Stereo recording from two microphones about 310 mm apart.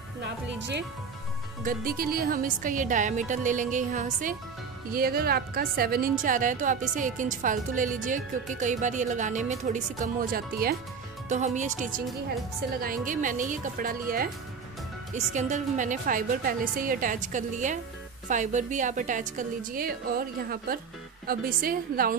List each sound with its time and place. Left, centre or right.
0.2 s a woman's voice: right